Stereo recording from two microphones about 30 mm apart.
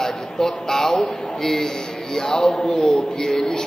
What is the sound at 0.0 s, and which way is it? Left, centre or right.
A man's voice, centre.